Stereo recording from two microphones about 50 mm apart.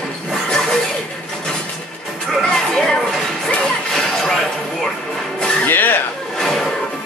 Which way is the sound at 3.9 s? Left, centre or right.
Centre.